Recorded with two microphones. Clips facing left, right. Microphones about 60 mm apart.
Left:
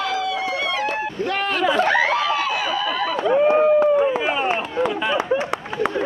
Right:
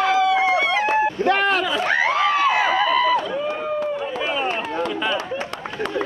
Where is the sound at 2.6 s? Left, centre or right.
Right.